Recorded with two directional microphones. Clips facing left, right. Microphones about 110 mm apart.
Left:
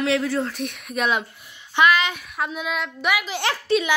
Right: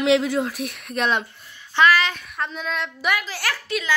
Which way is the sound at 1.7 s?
15° left (ahead or behind).